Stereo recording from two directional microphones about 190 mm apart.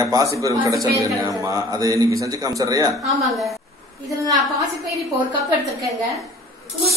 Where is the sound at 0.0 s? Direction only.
20° right (ahead or behind).